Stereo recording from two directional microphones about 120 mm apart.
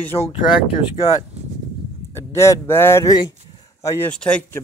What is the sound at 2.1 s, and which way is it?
Speech, 25° left (ahead or behind).